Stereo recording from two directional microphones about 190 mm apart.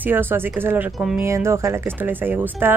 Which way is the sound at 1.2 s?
15° right (ahead or behind).